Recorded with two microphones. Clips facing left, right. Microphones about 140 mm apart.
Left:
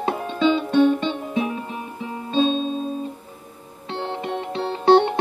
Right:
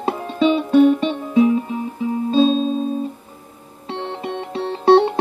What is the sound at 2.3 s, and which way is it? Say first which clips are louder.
Music: right 4 dB; 35° right (ahead or behind).